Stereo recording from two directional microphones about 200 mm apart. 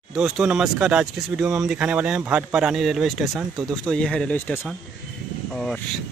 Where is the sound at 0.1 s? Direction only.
5° right (ahead or behind).